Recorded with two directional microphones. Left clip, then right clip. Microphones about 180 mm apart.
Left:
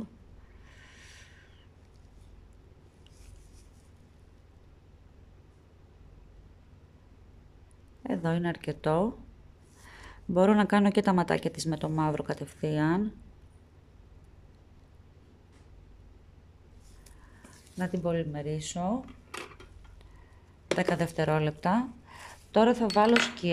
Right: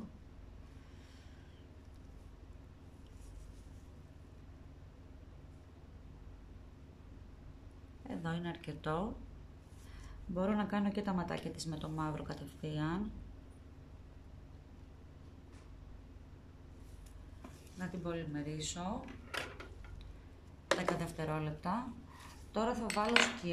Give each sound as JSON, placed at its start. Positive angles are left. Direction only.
{"t": 8.1, "sound": "speech", "side_deg": 45}
{"t": 10.0, "sound": "speech", "side_deg": 60}
{"t": 17.7, "sound": "speech", "side_deg": 50}
{"t": 20.9, "sound": "speech", "side_deg": 55}